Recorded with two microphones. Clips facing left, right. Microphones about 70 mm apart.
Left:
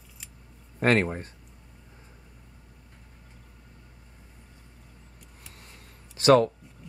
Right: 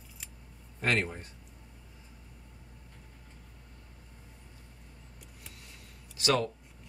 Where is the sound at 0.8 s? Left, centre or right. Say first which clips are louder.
Left 7 dB; left.